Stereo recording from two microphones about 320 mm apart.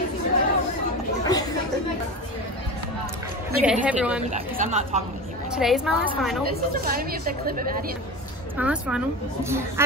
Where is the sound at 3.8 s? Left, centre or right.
Centre.